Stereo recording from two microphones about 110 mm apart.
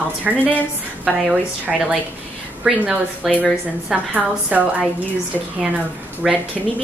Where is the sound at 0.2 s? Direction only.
15° right (ahead or behind).